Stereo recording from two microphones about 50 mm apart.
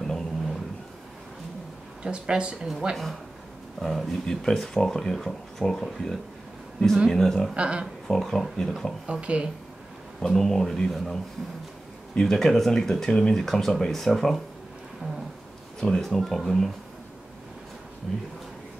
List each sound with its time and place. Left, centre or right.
0.0 s a sound: centre
2.0 s speech: centre
3.8 s speech: centre
7.5 s speech: right
8.1 s speech: centre
9.0 s speech: centre
10.2 s speech: centre
12.2 s speech: centre
15.8 s speech: centre